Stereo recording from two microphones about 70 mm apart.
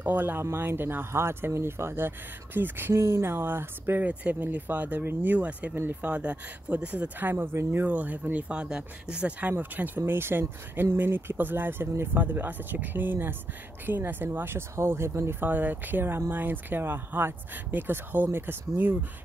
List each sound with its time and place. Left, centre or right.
0.0 s speech: right
4.1 s speech: right
7.8 s speech: right
9.5 s speech: right
15.4 s speech: right